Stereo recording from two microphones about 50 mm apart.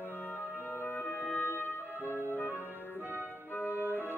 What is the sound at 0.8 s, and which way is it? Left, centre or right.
Music, left.